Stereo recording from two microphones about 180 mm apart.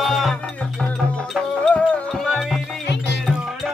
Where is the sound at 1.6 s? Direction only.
5° left (ahead or behind).